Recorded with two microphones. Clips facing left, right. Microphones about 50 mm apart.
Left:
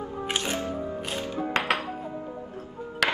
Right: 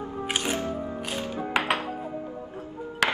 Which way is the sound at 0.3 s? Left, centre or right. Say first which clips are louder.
Right 1 dB; right.